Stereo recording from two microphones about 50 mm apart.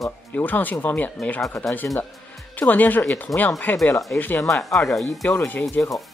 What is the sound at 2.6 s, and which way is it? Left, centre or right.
Speech, left.